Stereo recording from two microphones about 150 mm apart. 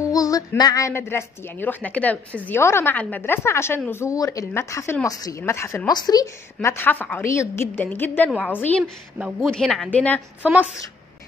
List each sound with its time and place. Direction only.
0.0 s a woman's voice: 25° left (ahead or behind)